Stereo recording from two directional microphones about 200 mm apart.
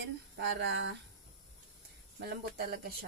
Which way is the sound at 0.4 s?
60° right (ahead or behind).